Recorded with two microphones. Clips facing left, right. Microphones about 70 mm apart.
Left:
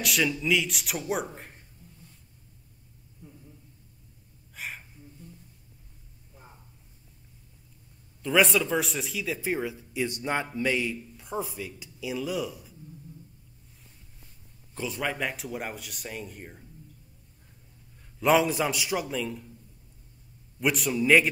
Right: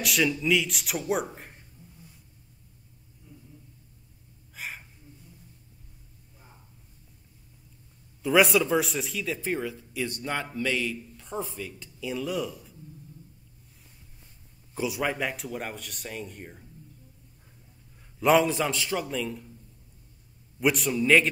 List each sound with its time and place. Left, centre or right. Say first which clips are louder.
0.0 s speech: right 1 dB; centre
4.6 s a sound: even; centre
8.2 s speech: right 2 dB; centre
14.7 s speech: right 3 dB; centre
18.2 s speech: right 1 dB; centre
20.6 s speech: right 1 dB; centre